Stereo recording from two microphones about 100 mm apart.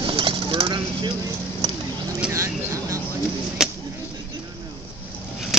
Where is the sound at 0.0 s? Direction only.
55° right (ahead or behind).